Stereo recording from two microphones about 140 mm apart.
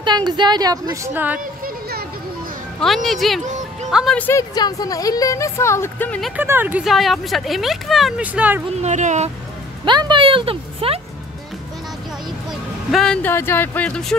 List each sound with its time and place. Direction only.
0.0 s a woman's voice: 30° right (ahead or behind)
1.1 s speech: 10° right (ahead or behind)
1.6 s a sound: 90° right
2.8 s speech: centre (ahead or behind)
4.2 s speech: 20° left (ahead or behind)
6.3 s speech: 15° right (ahead or behind)
8.3 s speech: 10° right (ahead or behind)
8.8 s speech: 55° right (ahead or behind)
9.8 s speech: 35° right (ahead or behind)
12.4 s music: centre (ahead or behind)
13.3 s speech: 15° left (ahead or behind)